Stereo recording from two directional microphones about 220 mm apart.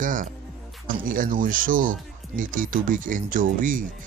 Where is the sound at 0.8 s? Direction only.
40° right (ahead or behind).